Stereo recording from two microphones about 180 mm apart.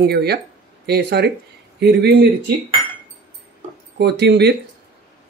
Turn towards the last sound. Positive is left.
turn(degrees=-70)  # may be behind; listen again after turning